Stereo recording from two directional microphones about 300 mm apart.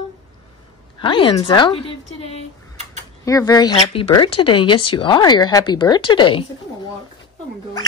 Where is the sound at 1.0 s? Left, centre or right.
Centre.